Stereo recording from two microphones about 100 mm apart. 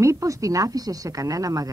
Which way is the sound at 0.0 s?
30° right (ahead or behind).